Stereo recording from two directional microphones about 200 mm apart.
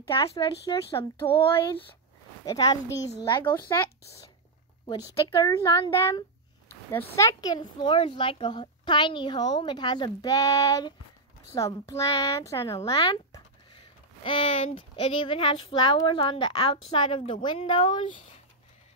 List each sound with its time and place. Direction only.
0.1 s a child's voice: 25° left (ahead or behind)
6.7 s a sound: 10° left (ahead or behind)
7.2 s a child's voice: 20° left (ahead or behind)